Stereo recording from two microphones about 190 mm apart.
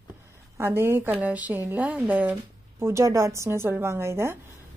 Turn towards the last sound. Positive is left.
turn(degrees=-15)  # may be behind; listen again after turning